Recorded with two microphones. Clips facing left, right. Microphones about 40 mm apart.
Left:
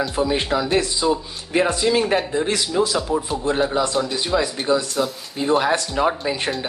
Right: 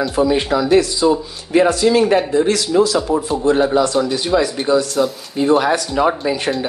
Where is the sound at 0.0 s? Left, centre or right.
Centre.